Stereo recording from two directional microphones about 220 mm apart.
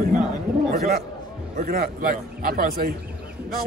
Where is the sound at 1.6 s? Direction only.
40° right (ahead or behind).